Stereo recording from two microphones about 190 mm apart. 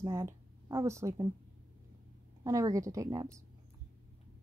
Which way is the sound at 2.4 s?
15° right (ahead or behind).